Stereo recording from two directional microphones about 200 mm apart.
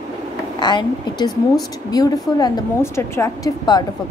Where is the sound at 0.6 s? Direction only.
20° left (ahead or behind).